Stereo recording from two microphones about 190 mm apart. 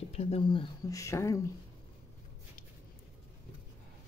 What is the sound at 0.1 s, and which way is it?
Speech, 35° left (ahead or behind).